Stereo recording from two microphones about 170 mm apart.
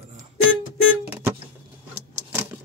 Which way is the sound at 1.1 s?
15° right (ahead or behind).